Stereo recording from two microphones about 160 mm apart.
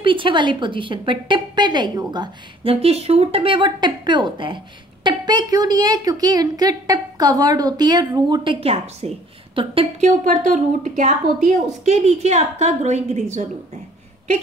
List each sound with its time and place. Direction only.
0.0 s a woman's voice: 30° right (ahead or behind)
8.5 s a woman's voice: 40° right (ahead or behind)
10.0 s a woman's voice: 50° right (ahead or behind)